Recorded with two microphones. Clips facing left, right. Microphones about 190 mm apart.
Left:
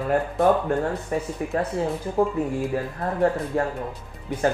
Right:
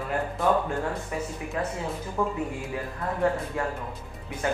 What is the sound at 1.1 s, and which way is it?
Speech, 40° left (ahead or behind).